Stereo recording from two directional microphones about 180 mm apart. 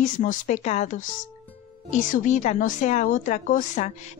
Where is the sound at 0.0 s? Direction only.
45° left (ahead or behind).